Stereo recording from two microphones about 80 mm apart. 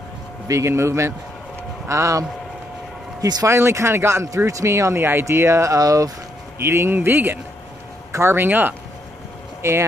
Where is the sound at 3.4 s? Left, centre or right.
Right.